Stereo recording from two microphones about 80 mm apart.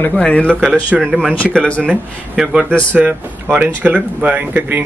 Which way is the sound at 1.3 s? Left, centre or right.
Centre.